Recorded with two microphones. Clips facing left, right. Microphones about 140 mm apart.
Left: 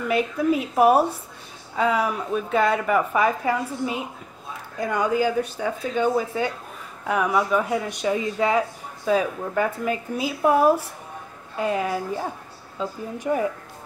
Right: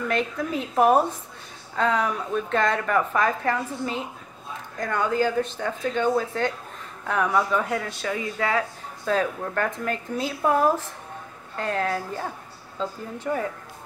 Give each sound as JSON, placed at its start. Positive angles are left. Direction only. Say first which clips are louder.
{"t": 0.1, "sound": "speech", "louder": "left 7 dB", "side_deg": 10}